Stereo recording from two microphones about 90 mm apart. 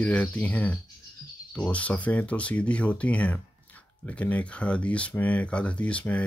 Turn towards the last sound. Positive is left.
turn(degrees=15)  # may be behind; listen again after turning